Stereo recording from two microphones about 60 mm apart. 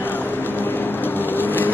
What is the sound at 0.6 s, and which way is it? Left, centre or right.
Vehicle, left.